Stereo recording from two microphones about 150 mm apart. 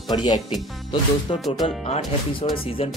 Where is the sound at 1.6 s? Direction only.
40° left (ahead or behind).